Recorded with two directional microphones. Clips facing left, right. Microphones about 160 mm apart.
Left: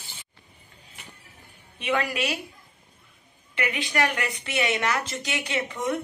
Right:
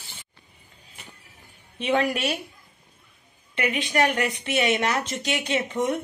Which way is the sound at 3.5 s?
25° right (ahead or behind).